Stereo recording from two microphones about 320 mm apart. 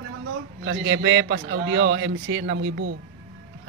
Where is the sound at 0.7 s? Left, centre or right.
Right.